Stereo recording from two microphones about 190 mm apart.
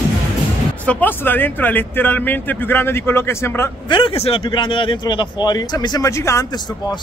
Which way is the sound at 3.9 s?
25° left (ahead or behind).